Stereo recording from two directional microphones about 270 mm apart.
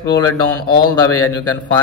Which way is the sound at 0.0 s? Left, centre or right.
Centre.